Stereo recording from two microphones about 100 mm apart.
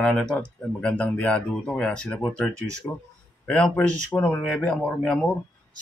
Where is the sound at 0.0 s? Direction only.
5° left (ahead or behind).